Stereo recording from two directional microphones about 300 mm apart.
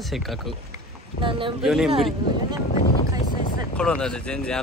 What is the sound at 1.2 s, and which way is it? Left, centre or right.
Speech, centre.